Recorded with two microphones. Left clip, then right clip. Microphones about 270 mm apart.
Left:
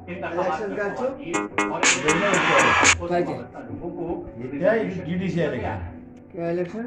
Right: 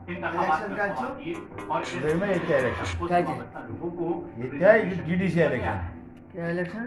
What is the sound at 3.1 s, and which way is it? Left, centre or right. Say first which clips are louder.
Speech: even; centre.